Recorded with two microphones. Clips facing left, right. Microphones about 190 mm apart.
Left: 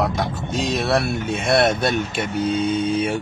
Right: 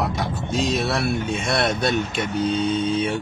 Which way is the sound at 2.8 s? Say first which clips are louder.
Left 1 dB; 10° left (ahead or behind).